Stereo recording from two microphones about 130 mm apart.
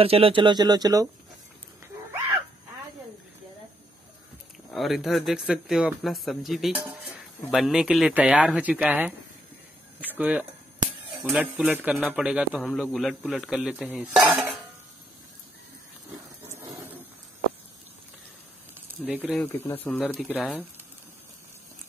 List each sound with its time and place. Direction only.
0.0 s speech: 45° right (ahead or behind); by 1.0 s 30° right (ahead or behind)
4.6 s a man's voice: centre (ahead or behind)
9.9 s a sound: 10° right (ahead or behind)
11.2 s a man's voice: 5° right (ahead or behind)
19.0 s speech: 10° right (ahead or behind)
19.7 s a man's voice: 15° left (ahead or behind)